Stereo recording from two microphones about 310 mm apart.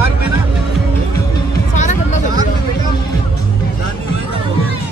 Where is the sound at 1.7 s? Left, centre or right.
Left.